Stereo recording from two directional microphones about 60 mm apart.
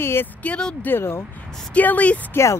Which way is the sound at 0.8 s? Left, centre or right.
Left.